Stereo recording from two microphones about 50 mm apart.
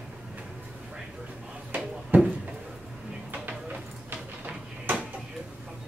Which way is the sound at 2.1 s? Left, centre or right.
Right.